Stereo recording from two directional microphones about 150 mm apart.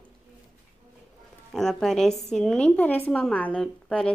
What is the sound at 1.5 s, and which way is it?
Speech, centre (ahead or behind).